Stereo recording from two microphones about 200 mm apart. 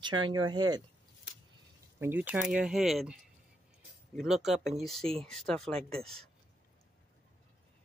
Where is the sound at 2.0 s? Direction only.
10° right (ahead or behind).